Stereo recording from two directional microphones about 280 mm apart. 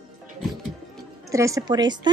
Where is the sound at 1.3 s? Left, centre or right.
Centre.